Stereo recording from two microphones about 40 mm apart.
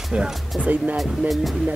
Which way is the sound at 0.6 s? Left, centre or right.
Right.